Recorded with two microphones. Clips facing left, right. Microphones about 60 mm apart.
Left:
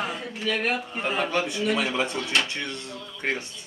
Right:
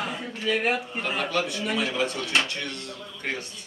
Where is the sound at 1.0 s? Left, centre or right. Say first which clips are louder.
Left 3 dB; left.